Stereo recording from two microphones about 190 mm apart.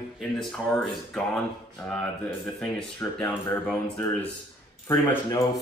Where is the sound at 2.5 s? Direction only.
Centre (ahead or behind).